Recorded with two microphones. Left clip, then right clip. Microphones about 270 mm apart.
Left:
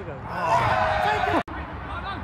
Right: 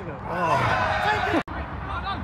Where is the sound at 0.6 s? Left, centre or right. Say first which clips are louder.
Left 1 dB; left.